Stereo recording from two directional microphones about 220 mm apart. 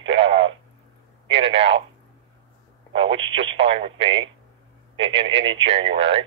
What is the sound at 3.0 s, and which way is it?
Speech, 20° right (ahead or behind).